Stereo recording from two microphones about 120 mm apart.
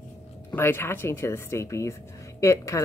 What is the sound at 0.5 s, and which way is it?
Speech, 20° left (ahead or behind).